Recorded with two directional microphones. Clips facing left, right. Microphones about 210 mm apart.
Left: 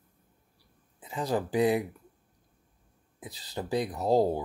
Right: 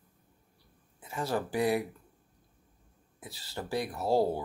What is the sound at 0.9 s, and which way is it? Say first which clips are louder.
Speech: left 2 dB; 15° left (ahead or behind).